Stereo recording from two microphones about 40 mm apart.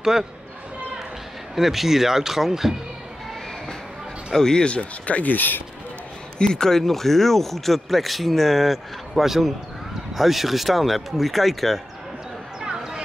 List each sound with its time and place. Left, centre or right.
0.0 s speech: centre
1.5 s speech: centre
4.3 s speech: centre
4.6 s speech: left
5.3 s speech: left
6.3 s speech: centre